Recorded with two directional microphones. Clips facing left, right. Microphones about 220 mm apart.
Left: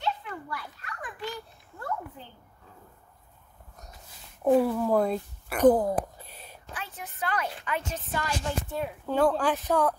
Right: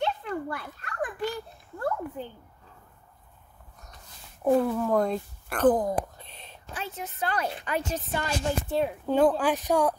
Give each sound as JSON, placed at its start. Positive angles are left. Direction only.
{"t": 0.0, "sound": "children playing", "side_deg": -55}
{"t": 4.5, "sound": "speech", "side_deg": 5}
{"t": 6.7, "sound": "speech", "side_deg": -25}
{"t": 8.1, "sound": "speech", "side_deg": -25}